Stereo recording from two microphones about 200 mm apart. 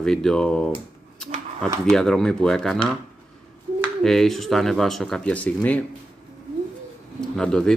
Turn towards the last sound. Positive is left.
turn(degrees=0)  # may be behind; listen again after turning